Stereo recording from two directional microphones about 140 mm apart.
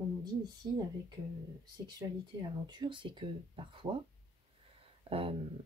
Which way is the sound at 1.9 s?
30° right (ahead or behind).